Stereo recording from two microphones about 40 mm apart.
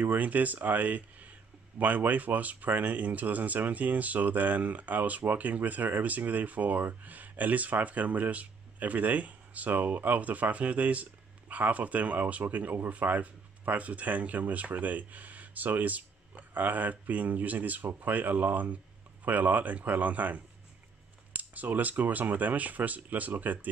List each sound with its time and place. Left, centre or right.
0.0 s speech: right